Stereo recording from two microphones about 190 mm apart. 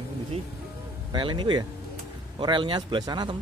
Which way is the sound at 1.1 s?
25° right (ahead or behind).